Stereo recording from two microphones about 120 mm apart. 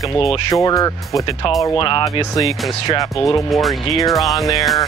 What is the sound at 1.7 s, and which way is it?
Speech, 45° left (ahead or behind).